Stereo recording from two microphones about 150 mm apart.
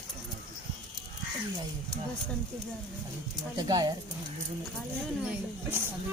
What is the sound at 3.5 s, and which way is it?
Speech, 25° right (ahead or behind).